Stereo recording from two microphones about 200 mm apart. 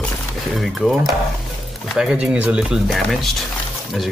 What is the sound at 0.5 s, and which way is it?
Speech, centre (ahead or behind).